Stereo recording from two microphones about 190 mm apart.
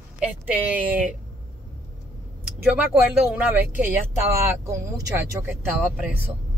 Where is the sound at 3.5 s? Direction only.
10° right (ahead or behind).